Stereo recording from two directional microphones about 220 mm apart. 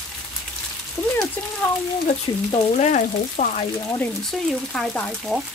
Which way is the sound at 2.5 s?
30° left (ahead or behind).